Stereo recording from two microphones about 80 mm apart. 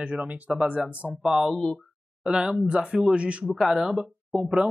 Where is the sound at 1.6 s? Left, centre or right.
Centre.